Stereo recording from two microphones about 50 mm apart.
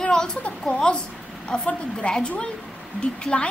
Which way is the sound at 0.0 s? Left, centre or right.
Centre.